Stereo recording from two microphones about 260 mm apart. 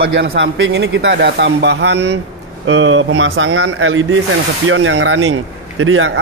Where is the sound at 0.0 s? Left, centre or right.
Right.